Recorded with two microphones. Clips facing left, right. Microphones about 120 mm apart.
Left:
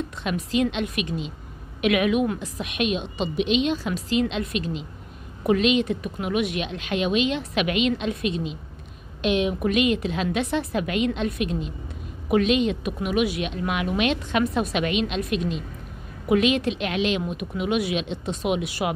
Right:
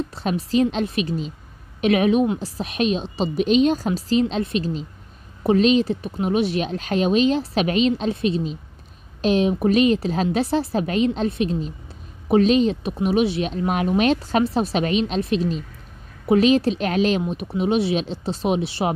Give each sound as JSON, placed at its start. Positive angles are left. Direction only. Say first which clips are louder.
{"t": 0.2, "sound": "speech", "louder": "right 4 dB", "side_deg": -35}